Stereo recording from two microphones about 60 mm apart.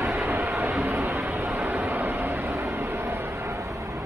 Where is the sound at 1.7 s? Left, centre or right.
Right.